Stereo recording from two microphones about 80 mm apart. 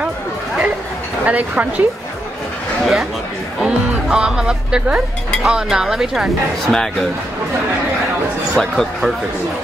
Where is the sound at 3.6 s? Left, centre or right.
Centre.